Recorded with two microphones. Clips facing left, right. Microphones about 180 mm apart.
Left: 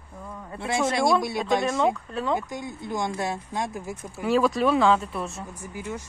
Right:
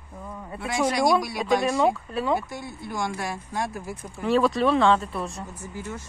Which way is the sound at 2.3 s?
15° left (ahead or behind).